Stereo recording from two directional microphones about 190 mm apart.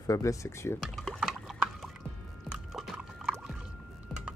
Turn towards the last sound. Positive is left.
turn(degrees=0)  # may be behind; listen again after turning